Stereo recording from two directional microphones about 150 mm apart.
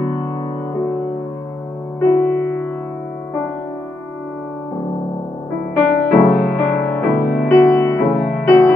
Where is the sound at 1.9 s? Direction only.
10° left (ahead or behind).